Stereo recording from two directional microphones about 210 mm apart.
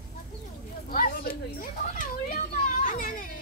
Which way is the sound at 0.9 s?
45° left (ahead or behind).